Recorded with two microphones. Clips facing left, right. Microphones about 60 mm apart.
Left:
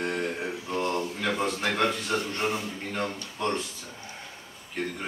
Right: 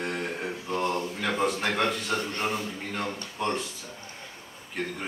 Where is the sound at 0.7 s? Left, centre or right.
Centre.